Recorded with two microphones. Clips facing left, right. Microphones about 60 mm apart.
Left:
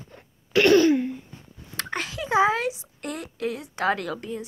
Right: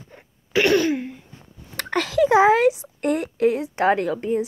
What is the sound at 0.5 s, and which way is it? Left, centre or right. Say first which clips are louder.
Throat clearing: left 2 dB; centre.